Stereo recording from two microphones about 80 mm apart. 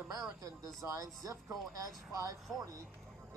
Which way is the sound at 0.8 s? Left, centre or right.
Right.